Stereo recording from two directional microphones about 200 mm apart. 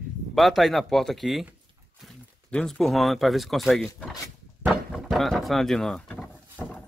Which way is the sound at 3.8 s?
15° left (ahead or behind).